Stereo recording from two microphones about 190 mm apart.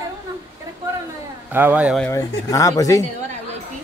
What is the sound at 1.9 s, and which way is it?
A man's voice, 15° left (ahead or behind).